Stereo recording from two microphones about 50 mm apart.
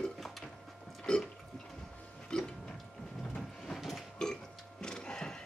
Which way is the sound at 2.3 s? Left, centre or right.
Centre.